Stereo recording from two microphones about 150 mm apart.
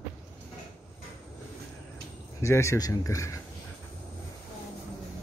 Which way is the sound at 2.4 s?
20° left (ahead or behind).